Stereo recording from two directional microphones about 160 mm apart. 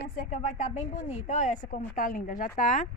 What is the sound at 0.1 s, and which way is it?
Speech, 60° left (ahead or behind).